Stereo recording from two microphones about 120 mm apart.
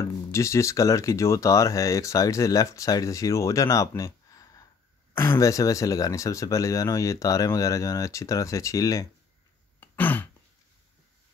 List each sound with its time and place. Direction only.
0.3 s speech: 25° left (ahead or behind)
9.8 s throat clearing: 15° left (ahead or behind)